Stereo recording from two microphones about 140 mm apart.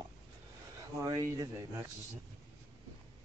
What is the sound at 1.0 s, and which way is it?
Speech, 25° right (ahead or behind).